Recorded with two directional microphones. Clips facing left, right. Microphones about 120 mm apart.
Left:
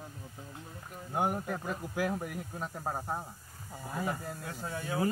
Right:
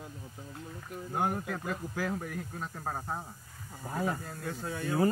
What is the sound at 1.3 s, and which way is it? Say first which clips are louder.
Speech: even; 10° left (ahead or behind).